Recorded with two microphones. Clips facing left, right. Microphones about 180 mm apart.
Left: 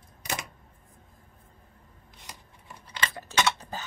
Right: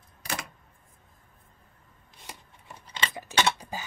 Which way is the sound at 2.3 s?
25° right (ahead or behind).